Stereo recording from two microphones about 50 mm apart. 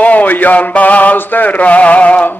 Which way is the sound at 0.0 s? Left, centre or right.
Left.